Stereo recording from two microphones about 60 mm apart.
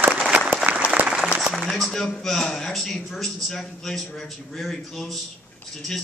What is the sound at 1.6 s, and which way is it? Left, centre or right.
A man's voice, centre.